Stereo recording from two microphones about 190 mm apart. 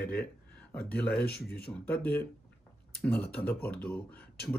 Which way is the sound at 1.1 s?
55° left (ahead or behind).